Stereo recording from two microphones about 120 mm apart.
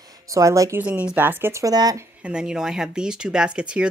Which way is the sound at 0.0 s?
30° right (ahead or behind).